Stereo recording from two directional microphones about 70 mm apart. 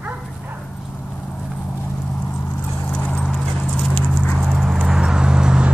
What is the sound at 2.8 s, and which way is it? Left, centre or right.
Clip-clop, left.